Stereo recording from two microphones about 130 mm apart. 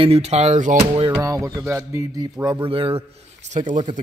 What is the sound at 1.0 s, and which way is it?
Speech, 30° right (ahead or behind).